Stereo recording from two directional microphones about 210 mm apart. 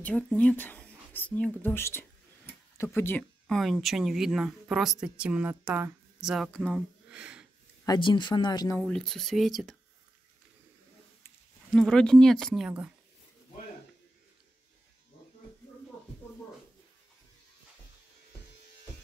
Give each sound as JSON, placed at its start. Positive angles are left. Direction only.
{"t": 0.3, "sound": "speech", "side_deg": 5}
{"t": 7.8, "sound": "speech", "side_deg": 20}
{"t": 8.8, "sound": "speech", "side_deg": 0}
{"t": 11.7, "sound": "speech", "side_deg": 5}